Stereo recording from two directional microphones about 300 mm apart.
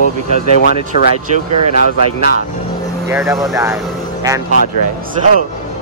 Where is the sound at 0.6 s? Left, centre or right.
Left.